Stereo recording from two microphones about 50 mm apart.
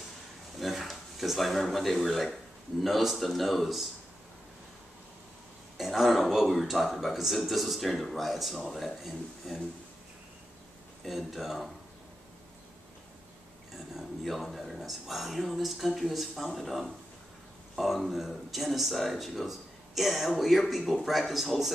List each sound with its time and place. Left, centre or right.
0.6 s speech: centre
5.8 s speech: centre
11.1 s speech: centre
13.9 s speech: centre